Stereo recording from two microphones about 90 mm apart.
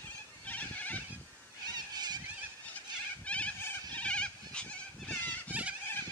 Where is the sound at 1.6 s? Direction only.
50° right (ahead or behind).